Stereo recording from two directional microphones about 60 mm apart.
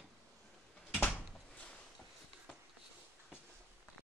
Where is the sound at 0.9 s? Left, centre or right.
Left.